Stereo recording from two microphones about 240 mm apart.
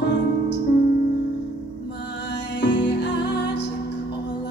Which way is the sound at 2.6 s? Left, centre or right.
Left.